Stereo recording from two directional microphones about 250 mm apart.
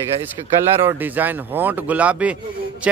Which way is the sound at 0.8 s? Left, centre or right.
Centre.